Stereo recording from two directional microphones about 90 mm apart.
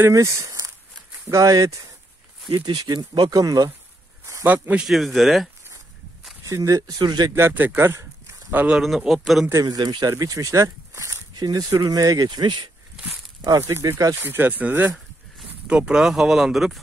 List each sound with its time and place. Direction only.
0.1 s speech: 35° right (ahead or behind)
2.5 s speech: 55° right (ahead or behind)
4.5 s speech: 20° right (ahead or behind)
4.8 s speech: centre (ahead or behind)
6.4 s speech: 35° right (ahead or behind)
7.3 s speech: 25° right (ahead or behind)
8.7 s speech: 5° right (ahead or behind)
9.5 s speech: 45° right (ahead or behind)
11.3 s speech: 45° right (ahead or behind)
13.4 s speech: 40° right (ahead or behind)
14.2 s speech: 25° right (ahead or behind)
15.6 s speech: 10° right (ahead or behind)